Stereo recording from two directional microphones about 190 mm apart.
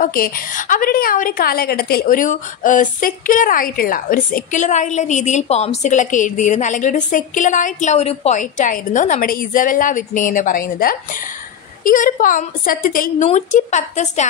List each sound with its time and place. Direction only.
0.0 s a woman's voice: 45° left (ahead or behind)